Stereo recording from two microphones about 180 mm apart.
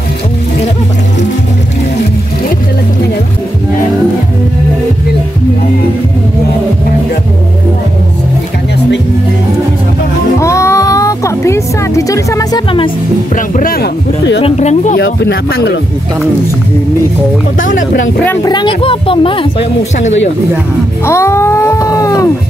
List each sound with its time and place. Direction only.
10.4 s music: 15° left (ahead or behind)
13.6 s speech: 55° left (ahead or behind)
14.4 s speech: 40° left (ahead or behind)
15.0 s speech: 80° left
17.7 s speech: 90° left
18.2 s music: 10° left (ahead or behind)
18.5 s speech: 25° left (ahead or behind)
21.0 s music: 15° left (ahead or behind)